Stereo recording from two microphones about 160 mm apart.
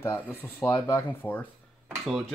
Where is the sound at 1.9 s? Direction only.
Centre (ahead or behind).